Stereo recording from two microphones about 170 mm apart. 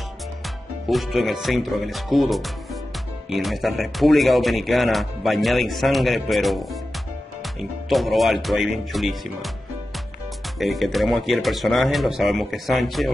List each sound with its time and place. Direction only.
0.8 s speech: centre (ahead or behind)
7.9 s speech: centre (ahead or behind)
10.6 s speech: centre (ahead or behind)